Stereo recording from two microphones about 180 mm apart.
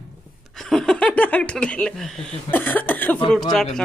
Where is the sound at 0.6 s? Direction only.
Centre (ahead or behind).